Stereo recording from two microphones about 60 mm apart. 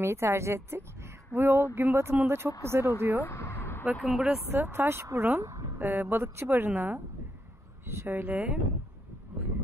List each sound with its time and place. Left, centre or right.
0.0 s a woman's voice: right
3.2 s a sound: left
3.9 s speech: centre
4.5 s a woman's voice: right
5.8 s a woman's voice: right
7.8 s a woman's voice: right